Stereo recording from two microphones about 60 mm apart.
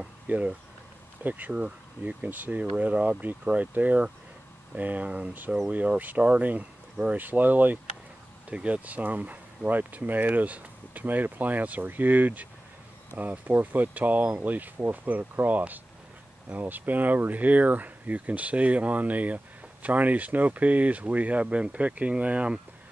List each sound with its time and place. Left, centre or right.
0.3 s speech: right